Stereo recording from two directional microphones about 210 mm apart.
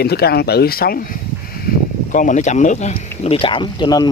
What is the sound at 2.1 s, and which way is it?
Speech, 35° left (ahead or behind).